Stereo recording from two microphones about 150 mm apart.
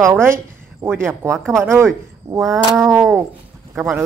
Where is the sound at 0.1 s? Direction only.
15° right (ahead or behind).